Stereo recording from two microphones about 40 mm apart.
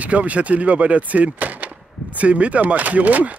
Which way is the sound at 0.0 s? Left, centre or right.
Right.